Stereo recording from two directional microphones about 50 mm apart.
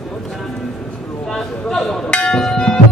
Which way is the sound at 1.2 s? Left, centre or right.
Centre.